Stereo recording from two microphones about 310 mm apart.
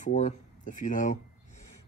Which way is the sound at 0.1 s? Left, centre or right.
Left.